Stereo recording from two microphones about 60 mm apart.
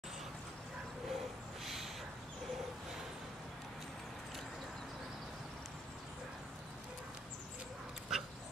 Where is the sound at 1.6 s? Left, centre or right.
Centre.